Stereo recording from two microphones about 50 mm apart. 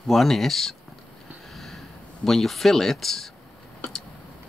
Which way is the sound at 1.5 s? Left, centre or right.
Centre.